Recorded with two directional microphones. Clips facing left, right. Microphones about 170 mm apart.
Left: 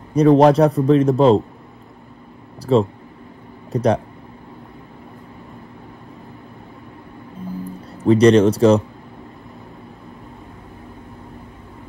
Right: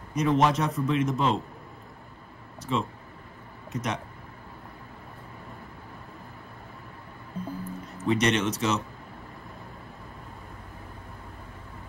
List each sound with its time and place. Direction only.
0.1 s a man's voice: 35° left (ahead or behind)
2.7 s a man's voice: 35° left (ahead or behind)
8.0 s a man's voice: 35° left (ahead or behind)